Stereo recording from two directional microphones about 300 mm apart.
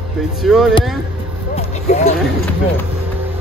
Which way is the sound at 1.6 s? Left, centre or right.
Left.